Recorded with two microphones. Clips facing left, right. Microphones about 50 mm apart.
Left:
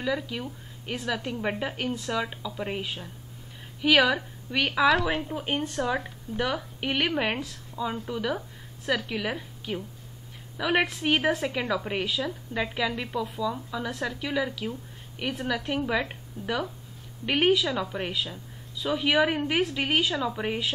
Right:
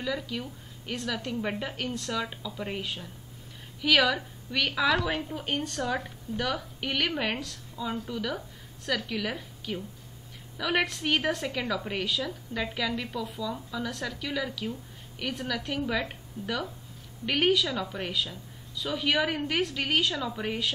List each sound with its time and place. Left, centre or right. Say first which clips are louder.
0.0 s a woman's voice: left 3 dB; left
4.8 s a woman's voice: left 5 dB; centre